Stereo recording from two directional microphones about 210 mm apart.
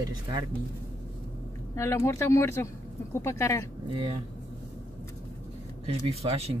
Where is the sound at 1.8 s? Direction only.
15° left (ahead or behind).